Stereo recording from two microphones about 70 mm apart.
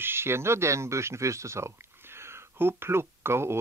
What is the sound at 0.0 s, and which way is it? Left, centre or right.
Speech, right.